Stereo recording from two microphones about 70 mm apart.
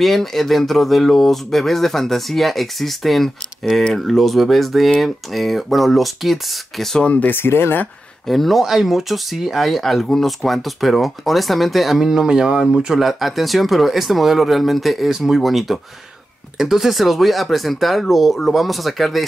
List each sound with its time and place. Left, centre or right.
0.0 s speech: centre
7.1 s speech: left
7.3 s speech: left
8.3 s speech: centre